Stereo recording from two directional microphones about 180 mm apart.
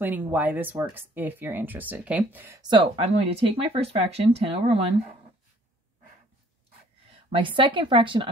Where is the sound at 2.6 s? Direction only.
30° right (ahead or behind).